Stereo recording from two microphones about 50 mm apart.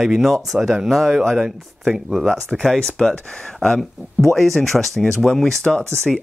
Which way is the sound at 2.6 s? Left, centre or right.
Centre.